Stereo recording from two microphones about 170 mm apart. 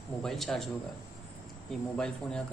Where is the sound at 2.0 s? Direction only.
5° left (ahead or behind).